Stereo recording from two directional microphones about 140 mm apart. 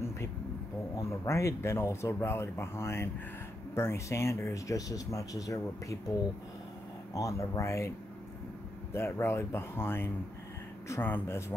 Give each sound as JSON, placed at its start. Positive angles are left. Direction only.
{"t": 0.9, "sound": "speech", "side_deg": 20}
{"t": 7.2, "sound": "speech", "side_deg": 20}
{"t": 8.9, "sound": "speech", "side_deg": 15}